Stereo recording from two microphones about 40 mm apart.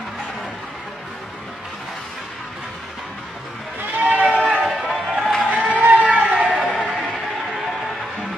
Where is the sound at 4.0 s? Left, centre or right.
Right.